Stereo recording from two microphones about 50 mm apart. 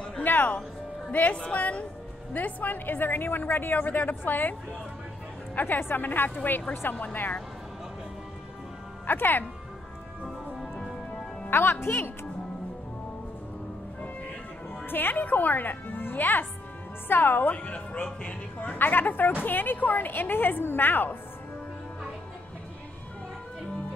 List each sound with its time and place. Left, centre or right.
0.2 s music: left
1.1 s a woman's voice: left
5.6 s a woman's voice: left
9.0 s a woman's voice: left
11.5 s a woman's voice: left
14.9 s a woman's voice: left
17.6 s speech: left
18.8 s a woman's voice: left